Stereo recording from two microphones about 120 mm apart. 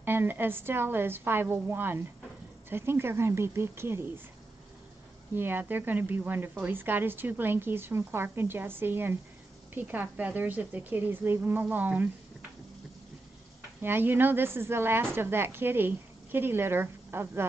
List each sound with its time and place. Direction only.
0.0 s a woman's voice: 15° right (ahead or behind)
5.3 s a woman's voice: 15° right (ahead or behind)
13.7 s a woman's voice: 15° right (ahead or behind)